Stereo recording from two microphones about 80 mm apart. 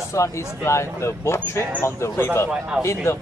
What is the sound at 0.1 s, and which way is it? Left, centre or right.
A man's voice, left.